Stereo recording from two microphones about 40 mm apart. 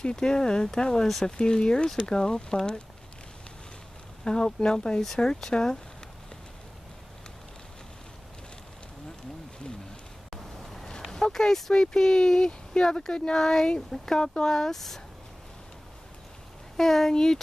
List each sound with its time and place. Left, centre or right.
0.0 s speech: centre
4.2 s speech: centre
10.3 s vehicle: centre
11.1 s speech: centre
16.7 s speech: centre